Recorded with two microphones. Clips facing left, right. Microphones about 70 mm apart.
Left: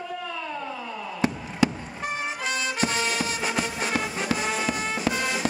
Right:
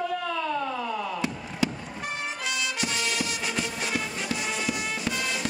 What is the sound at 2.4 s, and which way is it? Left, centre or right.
Music, left.